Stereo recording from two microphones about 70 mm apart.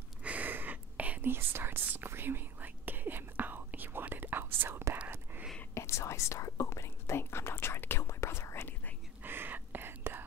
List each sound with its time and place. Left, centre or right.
0.2 s whispering: right
5.8 s whispering: left
9.2 s whispering: right